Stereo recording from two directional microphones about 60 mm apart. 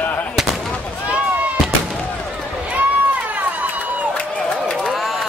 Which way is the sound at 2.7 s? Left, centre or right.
Right.